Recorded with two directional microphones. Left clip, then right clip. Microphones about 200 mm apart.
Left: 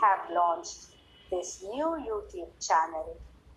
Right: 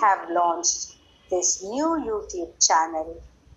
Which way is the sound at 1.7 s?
40° right (ahead or behind).